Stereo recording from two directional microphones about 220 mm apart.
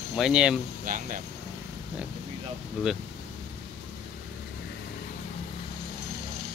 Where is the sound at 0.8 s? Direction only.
35° right (ahead or behind).